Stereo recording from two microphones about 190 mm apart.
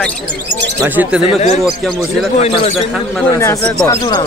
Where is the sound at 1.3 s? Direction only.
35° left (ahead or behind).